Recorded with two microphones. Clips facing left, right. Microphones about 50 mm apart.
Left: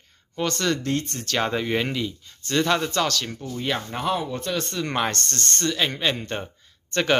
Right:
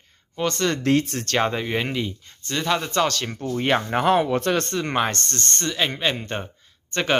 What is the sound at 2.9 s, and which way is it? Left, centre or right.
Speech, right.